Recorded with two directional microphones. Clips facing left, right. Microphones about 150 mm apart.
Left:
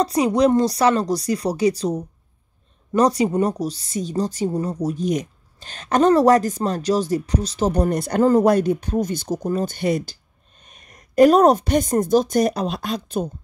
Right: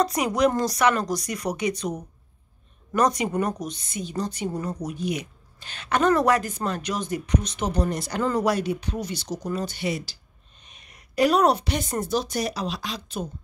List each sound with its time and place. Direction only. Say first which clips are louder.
0.0 s speech: left 4 dB; 30° left (ahead or behind)
4.7 s speech: left 7 dB; 40° left (ahead or behind)
7.7 s a woman's voice: left 6 dB; 55° left (ahead or behind)